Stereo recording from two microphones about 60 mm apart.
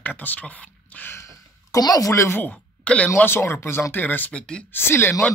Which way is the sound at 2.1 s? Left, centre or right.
Left.